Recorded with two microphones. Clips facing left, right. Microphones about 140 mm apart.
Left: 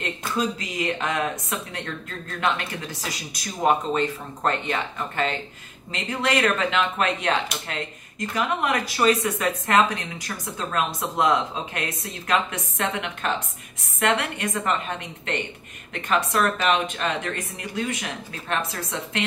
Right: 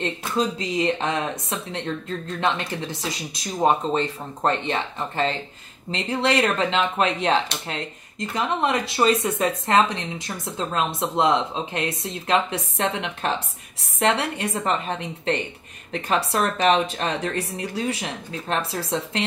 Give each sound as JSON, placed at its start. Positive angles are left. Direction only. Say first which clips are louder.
{"t": 0.0, "sound": "a woman's voice", "louder": "right 2 dB", "side_deg": -30}